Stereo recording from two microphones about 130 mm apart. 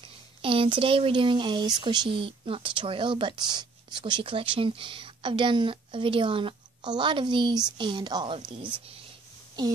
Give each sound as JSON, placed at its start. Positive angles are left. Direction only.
{"t": 0.4, "sound": "speech", "side_deg": -40}
{"t": 9.6, "sound": "speech", "side_deg": -30}